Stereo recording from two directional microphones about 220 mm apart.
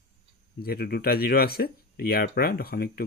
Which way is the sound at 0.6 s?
45° left (ahead or behind).